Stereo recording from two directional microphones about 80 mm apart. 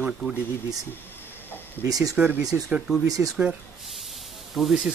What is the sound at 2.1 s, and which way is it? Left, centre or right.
Speech, right.